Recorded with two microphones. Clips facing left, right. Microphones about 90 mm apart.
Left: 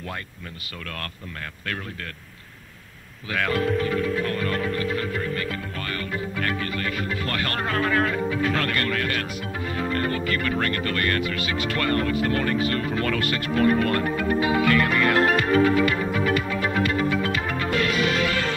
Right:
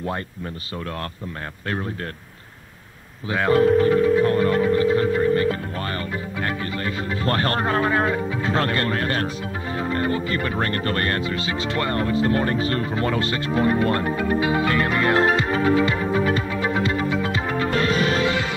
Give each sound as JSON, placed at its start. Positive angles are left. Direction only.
{"t": 3.3, "sound": "music", "side_deg": -25}
{"t": 6.4, "sound": "speech", "side_deg": -30}
{"t": 9.8, "sound": "music", "side_deg": -25}